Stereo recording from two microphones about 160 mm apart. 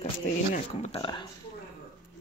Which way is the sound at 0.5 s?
45° left (ahead or behind).